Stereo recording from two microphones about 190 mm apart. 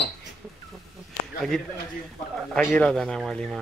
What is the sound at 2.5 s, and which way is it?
A man's voice, 5° left (ahead or behind).